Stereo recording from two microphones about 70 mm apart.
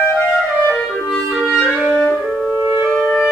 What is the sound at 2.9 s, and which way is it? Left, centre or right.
Music, centre.